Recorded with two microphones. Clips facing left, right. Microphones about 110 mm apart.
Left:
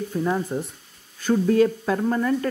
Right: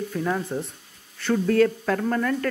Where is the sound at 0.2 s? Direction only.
10° left (ahead or behind).